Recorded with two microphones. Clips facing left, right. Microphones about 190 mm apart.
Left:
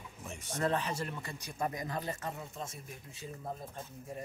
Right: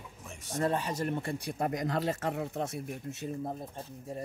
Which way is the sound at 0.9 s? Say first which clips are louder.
Right 5 dB; 40° right (ahead or behind).